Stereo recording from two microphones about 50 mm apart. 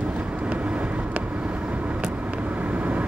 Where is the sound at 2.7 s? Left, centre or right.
Right.